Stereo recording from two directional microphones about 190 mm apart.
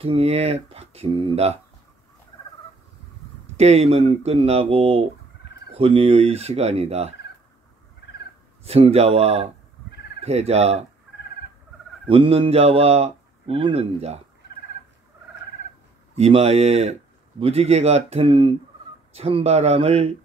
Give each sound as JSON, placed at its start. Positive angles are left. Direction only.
{"t": 0.0, "sound": "speech", "side_deg": -30}
{"t": 3.5, "sound": "speech", "side_deg": -35}
{"t": 8.6, "sound": "speech", "side_deg": -30}
{"t": 12.1, "sound": "speech", "side_deg": -30}
{"t": 16.2, "sound": "speech", "side_deg": -35}